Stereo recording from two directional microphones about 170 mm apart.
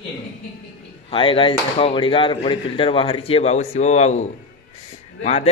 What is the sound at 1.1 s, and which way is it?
Speech, 30° left (ahead or behind).